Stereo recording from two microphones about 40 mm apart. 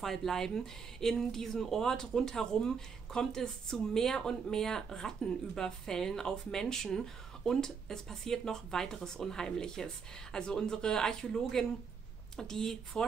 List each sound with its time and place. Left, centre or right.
0.0 s speech: centre